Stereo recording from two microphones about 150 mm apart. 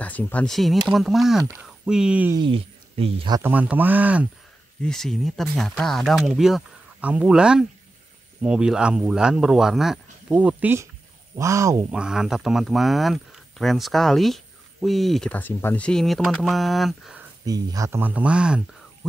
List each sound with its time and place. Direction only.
0.0 s speech: 10° left (ahead or behind); by 2.3 s 10° right (ahead or behind)
2.3 s speech: 35° right (ahead or behind)
3.4 s speech: 10° right (ahead or behind)
4.8 s speech: centre (ahead or behind); by 11.8 s 20° right (ahead or behind)
11.9 s speech: 5° right (ahead or behind)
17.5 s speech: 25° right (ahead or behind); by 18.6 s 5° right (ahead or behind)